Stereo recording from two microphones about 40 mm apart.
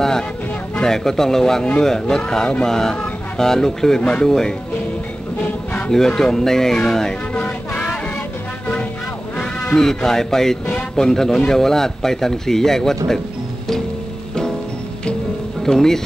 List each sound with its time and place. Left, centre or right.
0.8 s a man's voice: centre
5.9 s a man's voice: centre
7.3 s music: left
9.8 s a man's voice: centre
15.6 s speech: centre